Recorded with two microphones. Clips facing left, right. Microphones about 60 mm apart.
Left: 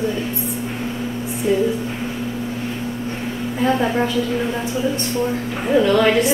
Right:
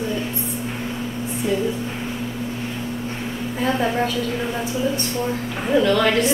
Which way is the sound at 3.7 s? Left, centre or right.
Centre.